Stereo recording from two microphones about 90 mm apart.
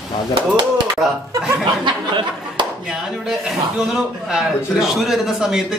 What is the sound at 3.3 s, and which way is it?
A man's voice, 5° right (ahead or behind).